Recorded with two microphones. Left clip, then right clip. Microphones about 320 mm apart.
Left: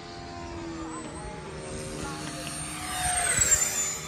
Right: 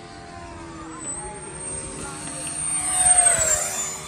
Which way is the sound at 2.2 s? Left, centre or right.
Left.